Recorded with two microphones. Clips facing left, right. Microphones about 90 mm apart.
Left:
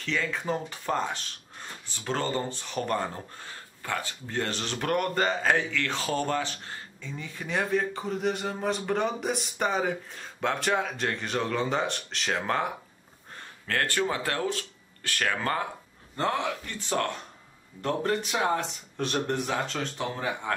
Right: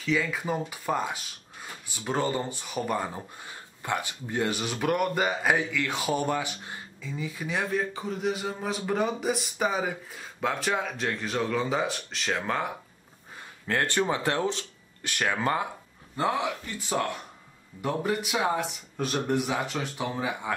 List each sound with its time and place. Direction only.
0.0 s speech: 5° right (ahead or behind)
13.4 s speech: 20° right (ahead or behind)